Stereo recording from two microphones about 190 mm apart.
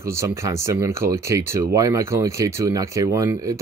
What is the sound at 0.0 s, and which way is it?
Speech, 15° right (ahead or behind).